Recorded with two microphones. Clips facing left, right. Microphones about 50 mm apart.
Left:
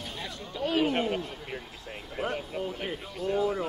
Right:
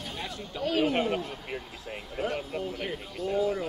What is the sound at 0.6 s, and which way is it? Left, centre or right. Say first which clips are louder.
Speech: even; left.